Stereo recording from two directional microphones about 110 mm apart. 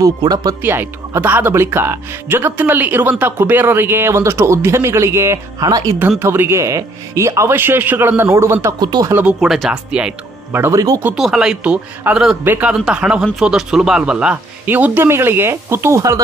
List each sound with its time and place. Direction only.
0.0 s speech: 35° right (ahead or behind)
0.6 s speech: 20° right (ahead or behind)
5.9 s speech: 20° right (ahead or behind)
8.7 s speech: 40° right (ahead or behind)
9.1 s speech: 10° right (ahead or behind)
10.5 s speech: 25° right (ahead or behind)
11.1 s speech: 5° right (ahead or behind)
14.7 s speech: 20° right (ahead or behind)